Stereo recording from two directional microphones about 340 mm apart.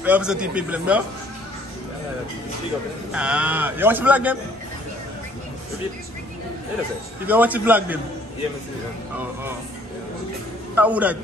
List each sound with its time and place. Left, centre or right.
0.0 s a man's voice: centre
3.1 s a man's voice: centre
7.2 s a man's voice: centre
10.8 s a man's voice: centre